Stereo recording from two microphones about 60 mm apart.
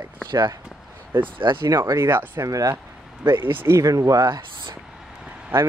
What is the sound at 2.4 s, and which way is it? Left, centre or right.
Speech, right.